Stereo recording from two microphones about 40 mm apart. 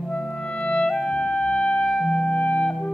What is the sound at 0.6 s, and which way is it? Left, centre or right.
Clarinet, left.